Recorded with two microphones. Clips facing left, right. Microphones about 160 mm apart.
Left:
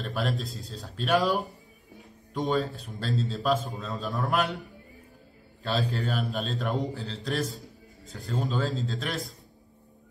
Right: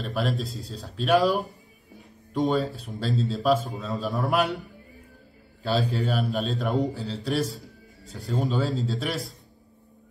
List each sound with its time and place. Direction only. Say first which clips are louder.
0.0 s a man's voice: right 3 dB; centre (ahead or behind)
5.6 s a man's voice: right 4 dB; 5° right (ahead or behind)